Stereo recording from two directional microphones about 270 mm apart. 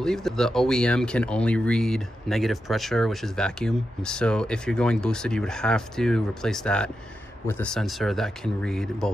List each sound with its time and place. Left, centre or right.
0.0 s speech: centre